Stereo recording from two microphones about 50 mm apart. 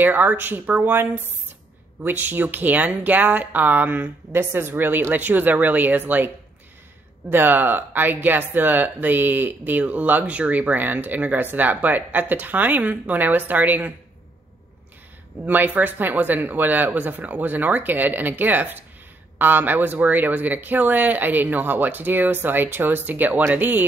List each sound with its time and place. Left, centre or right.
0.0 s speech: right
2.0 s speech: right
4.3 s a woman's voice: right
15.4 s speech: right